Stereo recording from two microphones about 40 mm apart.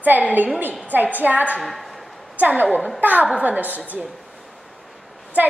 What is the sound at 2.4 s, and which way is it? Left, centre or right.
A woman's voice, right.